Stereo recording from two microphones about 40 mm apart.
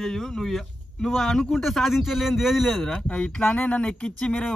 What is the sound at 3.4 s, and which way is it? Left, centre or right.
Speech, left.